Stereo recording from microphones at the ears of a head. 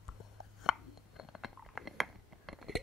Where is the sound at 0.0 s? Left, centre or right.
Left.